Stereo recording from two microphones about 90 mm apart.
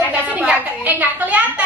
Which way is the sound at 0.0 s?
15° right (ahead or behind).